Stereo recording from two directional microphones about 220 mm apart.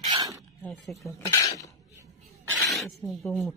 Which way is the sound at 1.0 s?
15° left (ahead or behind).